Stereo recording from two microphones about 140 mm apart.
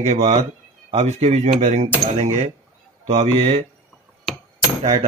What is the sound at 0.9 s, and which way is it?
Cutlery, 50° right (ahead or behind).